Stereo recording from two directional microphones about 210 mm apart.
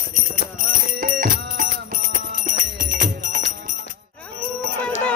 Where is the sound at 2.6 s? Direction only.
40° right (ahead or behind).